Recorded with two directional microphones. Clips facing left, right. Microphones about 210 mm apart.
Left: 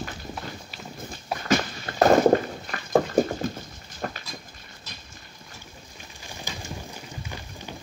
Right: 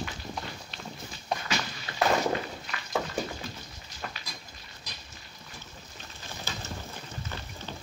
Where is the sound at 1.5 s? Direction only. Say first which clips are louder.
Left 10 dB; 50° left (ahead or behind).